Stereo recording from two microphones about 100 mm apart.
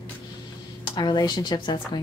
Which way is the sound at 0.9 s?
45° left (ahead or behind).